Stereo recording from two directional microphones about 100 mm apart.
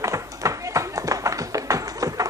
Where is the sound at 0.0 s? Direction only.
30° right (ahead or behind).